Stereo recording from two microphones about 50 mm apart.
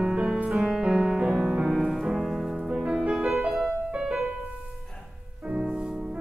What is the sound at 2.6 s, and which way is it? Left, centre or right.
Music, centre.